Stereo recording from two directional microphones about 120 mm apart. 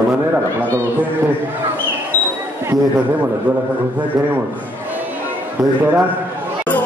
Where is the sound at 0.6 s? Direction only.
15° right (ahead or behind).